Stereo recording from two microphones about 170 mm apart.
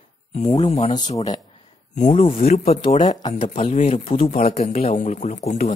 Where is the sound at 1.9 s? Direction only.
45° left (ahead or behind).